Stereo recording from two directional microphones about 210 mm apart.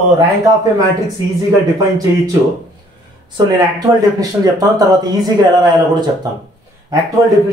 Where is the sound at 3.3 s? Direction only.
15° right (ahead or behind).